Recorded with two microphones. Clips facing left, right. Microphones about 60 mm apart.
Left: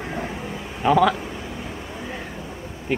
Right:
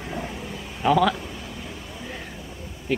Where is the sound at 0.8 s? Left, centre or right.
Centre.